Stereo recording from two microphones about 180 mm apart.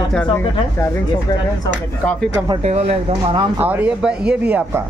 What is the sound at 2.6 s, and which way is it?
Speech, 35° right (ahead or behind).